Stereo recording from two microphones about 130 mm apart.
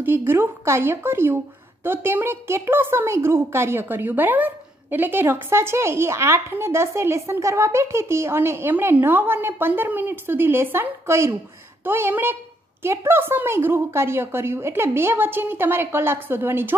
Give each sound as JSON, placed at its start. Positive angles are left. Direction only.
{"t": 0.0, "sound": "a woman's voice", "side_deg": -15}